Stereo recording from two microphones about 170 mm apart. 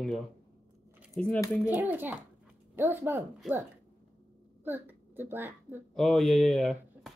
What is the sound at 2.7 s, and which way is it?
Speech, 10° right (ahead or behind).